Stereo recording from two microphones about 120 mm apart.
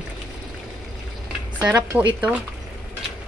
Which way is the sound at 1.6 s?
15° right (ahead or behind).